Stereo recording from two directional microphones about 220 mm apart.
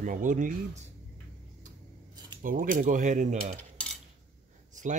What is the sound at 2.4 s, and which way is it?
Speech, 40° right (ahead or behind).